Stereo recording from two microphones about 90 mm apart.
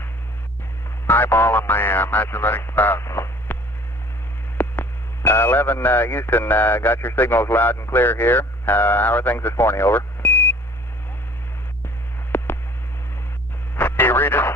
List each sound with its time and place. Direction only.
1.0 s speech: 25° left (ahead or behind)
4.6 s speech: 25° left (ahead or behind)
12.3 s a sound: 20° left (ahead or behind)
13.7 s radio: 20° left (ahead or behind)